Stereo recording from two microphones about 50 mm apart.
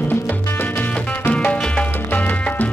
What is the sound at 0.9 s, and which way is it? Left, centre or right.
Music, left.